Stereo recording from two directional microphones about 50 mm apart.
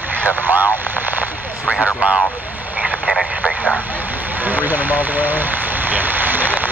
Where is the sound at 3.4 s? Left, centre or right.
Centre.